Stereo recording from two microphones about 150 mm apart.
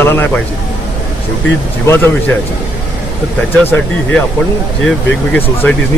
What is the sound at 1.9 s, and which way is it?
Speech, 15° left (ahead or behind).